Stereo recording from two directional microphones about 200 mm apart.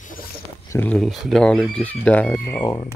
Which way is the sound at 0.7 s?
10° left (ahead or behind).